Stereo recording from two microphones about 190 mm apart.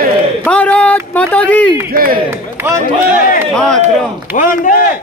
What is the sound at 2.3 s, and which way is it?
Speech, 10° right (ahead or behind).